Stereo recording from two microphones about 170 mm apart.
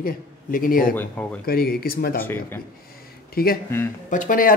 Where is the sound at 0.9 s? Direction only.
10° left (ahead or behind).